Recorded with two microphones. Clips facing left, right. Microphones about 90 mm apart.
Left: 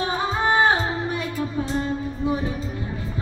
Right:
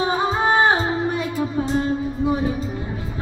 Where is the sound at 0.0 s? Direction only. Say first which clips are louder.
Right 3 dB; 15° right (ahead or behind).